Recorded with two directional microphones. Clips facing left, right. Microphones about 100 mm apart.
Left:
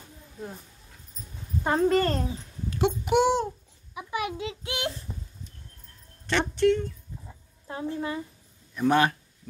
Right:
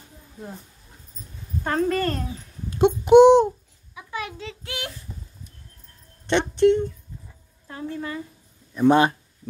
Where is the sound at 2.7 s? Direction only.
20° right (ahead or behind).